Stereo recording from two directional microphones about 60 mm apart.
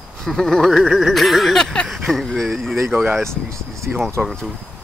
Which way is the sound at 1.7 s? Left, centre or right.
Centre.